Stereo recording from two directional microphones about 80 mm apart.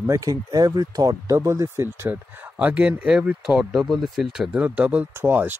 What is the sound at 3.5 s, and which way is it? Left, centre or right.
Speech, centre.